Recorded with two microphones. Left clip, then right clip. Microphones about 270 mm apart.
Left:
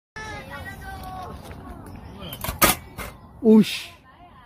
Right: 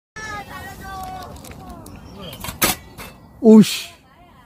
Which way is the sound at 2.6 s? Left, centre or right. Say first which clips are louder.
Left 1 dB; centre.